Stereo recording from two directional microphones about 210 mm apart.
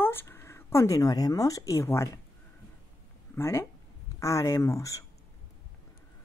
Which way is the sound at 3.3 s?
15° left (ahead or behind).